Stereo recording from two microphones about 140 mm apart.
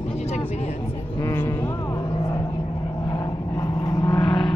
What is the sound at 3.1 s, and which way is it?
Vehicle, 25° left (ahead or behind).